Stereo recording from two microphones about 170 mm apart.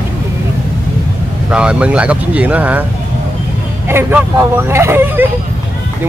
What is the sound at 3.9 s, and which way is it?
Speech, 15° right (ahead or behind).